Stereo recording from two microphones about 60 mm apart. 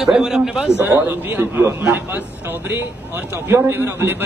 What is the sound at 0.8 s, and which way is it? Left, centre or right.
A man's voice, right.